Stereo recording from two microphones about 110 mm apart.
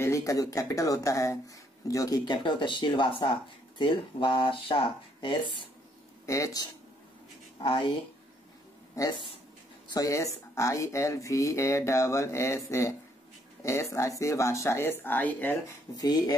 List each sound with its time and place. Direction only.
0.0 s speech: 30° left (ahead or behind); by 5.5 s 45° left (ahead or behind)
6.2 s speech: 30° left (ahead or behind)
7.6 s speech: 45° left (ahead or behind)
9.0 s speech: 30° left (ahead or behind)
16.0 s speech: 35° left (ahead or behind)